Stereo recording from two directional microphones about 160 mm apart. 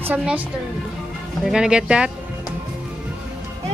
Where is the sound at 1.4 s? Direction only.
5° right (ahead or behind).